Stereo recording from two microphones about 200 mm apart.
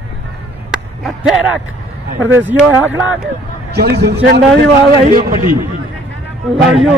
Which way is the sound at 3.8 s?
55° right (ahead or behind).